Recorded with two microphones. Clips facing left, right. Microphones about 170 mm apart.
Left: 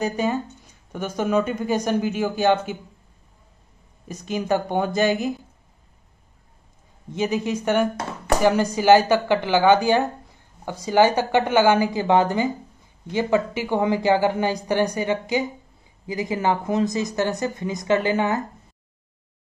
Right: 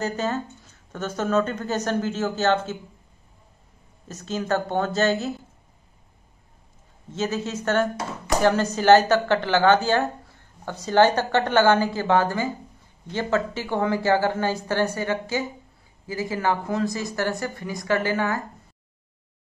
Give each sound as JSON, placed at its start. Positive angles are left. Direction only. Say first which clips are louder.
{"t": 0.0, "sound": "speech", "louder": "left 3 dB", "side_deg": 15}
{"t": 4.1, "sound": "speech", "louder": "left 2 dB", "side_deg": 15}
{"t": 7.1, "sound": "speech", "louder": "left 3 dB", "side_deg": 15}